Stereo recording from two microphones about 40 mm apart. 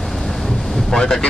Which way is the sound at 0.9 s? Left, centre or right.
Centre.